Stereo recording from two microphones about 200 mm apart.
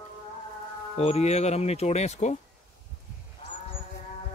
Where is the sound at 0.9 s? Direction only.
30° left (ahead or behind).